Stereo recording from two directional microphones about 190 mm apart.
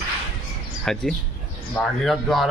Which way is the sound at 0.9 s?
Centre (ahead or behind).